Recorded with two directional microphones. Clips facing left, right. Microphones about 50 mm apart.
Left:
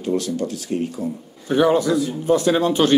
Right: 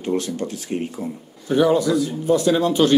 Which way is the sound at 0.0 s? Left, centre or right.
Right.